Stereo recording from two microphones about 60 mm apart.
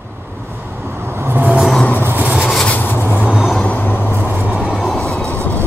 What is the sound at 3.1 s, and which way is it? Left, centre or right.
Vehicle, centre.